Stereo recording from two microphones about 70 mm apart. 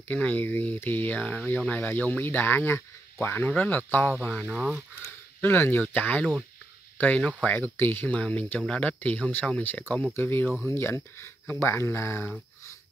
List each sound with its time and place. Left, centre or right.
0.1 s speech: left
5.4 s speech: left